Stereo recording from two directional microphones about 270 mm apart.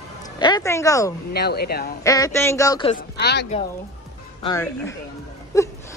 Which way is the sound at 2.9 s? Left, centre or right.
Left.